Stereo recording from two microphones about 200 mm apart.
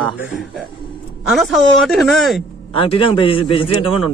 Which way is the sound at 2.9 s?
25° left (ahead or behind).